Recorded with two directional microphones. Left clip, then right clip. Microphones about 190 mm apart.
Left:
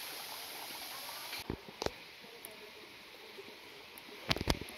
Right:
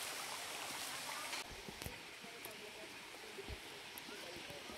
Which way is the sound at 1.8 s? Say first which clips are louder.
Left 14 dB; 25° right (ahead or behind).